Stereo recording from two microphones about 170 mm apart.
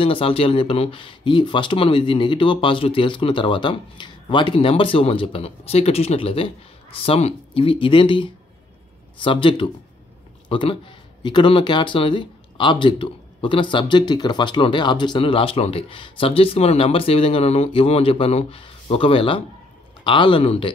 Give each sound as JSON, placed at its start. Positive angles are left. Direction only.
{"t": 0.0, "sound": "a man's voice", "side_deg": 30}